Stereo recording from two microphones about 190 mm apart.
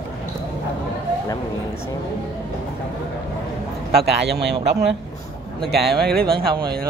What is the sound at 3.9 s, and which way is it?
Speech, 60° right (ahead or behind).